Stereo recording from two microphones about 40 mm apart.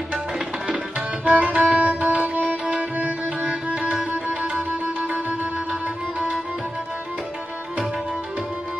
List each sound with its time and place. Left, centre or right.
1.2 s music: right
3.7 s music: right
5.7 s music: right